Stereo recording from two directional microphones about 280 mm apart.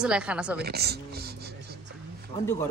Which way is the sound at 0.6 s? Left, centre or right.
Right.